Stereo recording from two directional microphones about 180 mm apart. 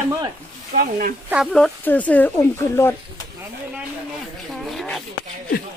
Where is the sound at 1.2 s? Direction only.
5° right (ahead or behind); by 2.9 s 15° left (ahead or behind).